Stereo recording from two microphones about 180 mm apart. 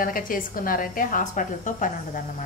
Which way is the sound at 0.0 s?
50° left (ahead or behind).